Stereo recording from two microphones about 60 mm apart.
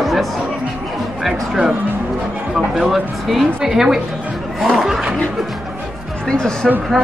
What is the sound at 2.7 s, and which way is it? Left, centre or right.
Speech, centre.